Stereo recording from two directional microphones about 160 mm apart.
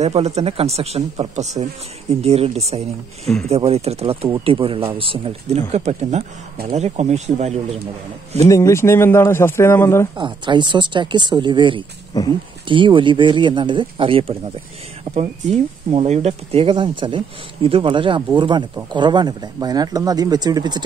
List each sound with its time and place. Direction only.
0.0 s speech: 45° right (ahead or behind)
1.4 s speech: 45° right (ahead or behind)
8.5 s speech: 20° left (ahead or behind)
10.1 s speech: 30° right (ahead or behind)
12.1 s speech: 25° left (ahead or behind)
12.6 s speech: 30° right (ahead or behind)